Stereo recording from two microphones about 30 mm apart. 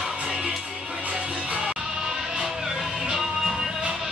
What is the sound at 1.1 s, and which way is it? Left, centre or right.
Music, right.